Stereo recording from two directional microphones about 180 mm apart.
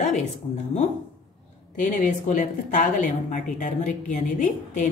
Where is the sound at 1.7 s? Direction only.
45° left (ahead or behind).